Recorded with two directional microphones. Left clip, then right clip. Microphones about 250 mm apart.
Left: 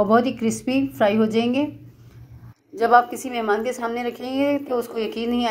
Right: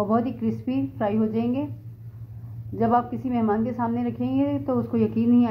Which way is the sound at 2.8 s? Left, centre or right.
Left.